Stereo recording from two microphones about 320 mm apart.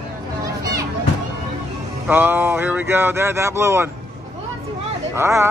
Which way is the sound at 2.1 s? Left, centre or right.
Centre.